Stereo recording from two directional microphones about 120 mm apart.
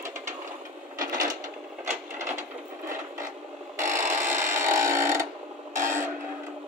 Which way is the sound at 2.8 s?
25° right (ahead or behind).